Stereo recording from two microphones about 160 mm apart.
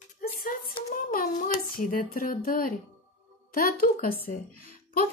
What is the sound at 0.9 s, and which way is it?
A child's voice, 60° left (ahead or behind).